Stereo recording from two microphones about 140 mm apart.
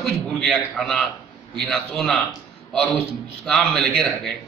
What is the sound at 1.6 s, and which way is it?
Speech, centre (ahead or behind).